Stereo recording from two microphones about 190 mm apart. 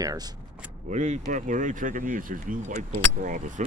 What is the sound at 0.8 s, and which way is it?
Speech, 40° right (ahead or behind).